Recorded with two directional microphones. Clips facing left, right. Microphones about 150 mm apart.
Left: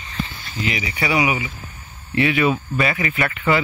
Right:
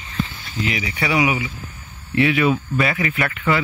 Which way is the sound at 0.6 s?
5° left (ahead or behind).